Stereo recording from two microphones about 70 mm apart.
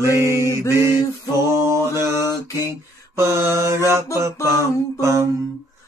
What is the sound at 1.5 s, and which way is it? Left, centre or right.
Mantra, right.